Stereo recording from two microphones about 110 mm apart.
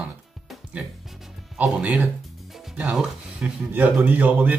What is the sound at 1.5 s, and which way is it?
Speech, 10° right (ahead or behind).